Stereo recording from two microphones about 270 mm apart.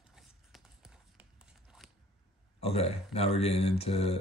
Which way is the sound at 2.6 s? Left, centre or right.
Left.